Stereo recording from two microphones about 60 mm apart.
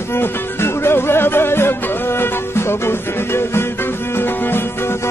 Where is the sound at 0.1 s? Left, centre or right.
Left.